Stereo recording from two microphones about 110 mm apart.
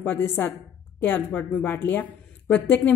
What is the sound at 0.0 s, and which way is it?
A woman's voice, 15° left (ahead or behind).